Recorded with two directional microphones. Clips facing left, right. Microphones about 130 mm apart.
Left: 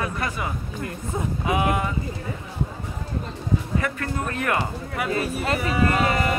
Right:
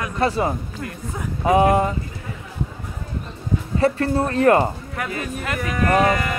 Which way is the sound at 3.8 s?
35° right (ahead or behind).